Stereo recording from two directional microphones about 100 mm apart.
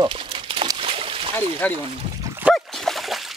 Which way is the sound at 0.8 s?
65° right (ahead or behind).